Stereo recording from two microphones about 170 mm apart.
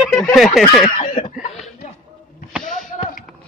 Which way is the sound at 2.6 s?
50° left (ahead or behind).